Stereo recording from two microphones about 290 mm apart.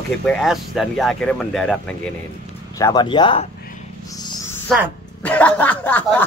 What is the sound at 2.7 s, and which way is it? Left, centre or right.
Speech, centre.